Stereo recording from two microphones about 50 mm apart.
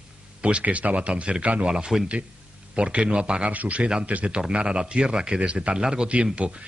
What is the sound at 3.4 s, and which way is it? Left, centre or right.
A man's voice, right.